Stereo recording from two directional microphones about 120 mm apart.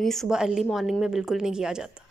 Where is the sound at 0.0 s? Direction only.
5° left (ahead or behind).